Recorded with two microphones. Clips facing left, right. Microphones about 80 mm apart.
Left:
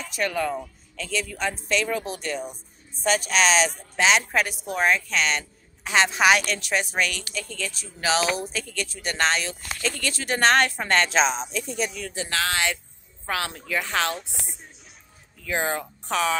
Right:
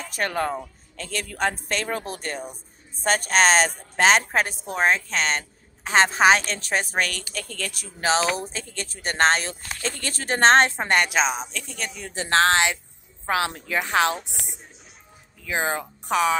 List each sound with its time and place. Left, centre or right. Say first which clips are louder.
0.0 s a woman's voice: even; right
8.0 s a woman's voice: right 1 dB; right
11.1 s speech: left 1 dB; centre
11.5 s speech: left 5 dB; centre
12.0 s a woman's voice: right 7 dB; right
15.4 s speech: right 1 dB; centre